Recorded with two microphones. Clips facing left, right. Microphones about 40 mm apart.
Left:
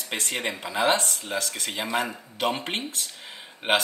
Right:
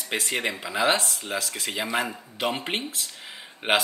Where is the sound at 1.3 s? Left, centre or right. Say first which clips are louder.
Even; right.